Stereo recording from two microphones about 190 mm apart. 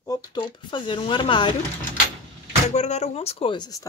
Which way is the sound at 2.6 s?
35° left (ahead or behind).